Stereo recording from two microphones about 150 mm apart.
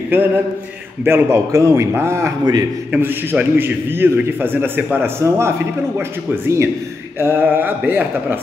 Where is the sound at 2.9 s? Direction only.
15° right (ahead or behind).